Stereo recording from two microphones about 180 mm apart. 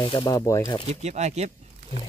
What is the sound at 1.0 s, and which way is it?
Speech, 40° right (ahead or behind).